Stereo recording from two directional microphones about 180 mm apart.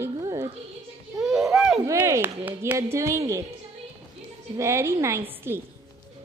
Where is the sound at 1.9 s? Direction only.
15° right (ahead or behind).